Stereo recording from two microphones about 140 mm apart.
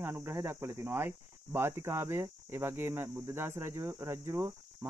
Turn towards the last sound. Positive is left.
turn(degrees=-20)  # may be behind; listen again after turning